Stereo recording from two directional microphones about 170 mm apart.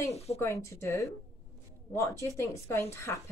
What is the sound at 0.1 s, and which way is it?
Speech, 35° left (ahead or behind).